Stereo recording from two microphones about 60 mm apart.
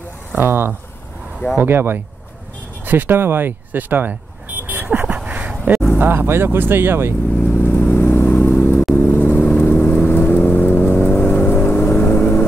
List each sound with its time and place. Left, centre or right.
0.4 s speech: right
4.6 s dog: right
5.0 s a sound: centre
5.9 s speech: right
7.5 s vehicle: left
8.0 s vehicle: left